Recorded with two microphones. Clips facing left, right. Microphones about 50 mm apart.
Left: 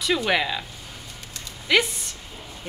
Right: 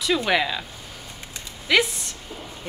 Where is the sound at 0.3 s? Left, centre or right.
Centre.